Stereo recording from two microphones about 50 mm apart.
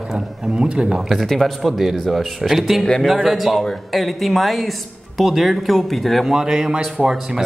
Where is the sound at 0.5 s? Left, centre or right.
Centre.